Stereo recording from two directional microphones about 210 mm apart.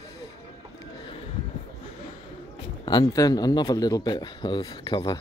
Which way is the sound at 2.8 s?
20° left (ahead or behind).